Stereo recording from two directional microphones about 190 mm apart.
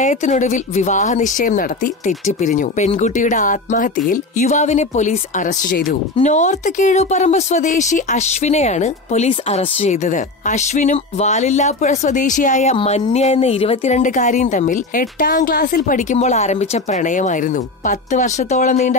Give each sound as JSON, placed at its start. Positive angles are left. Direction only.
{"t": 0.0, "sound": "speech", "side_deg": 40}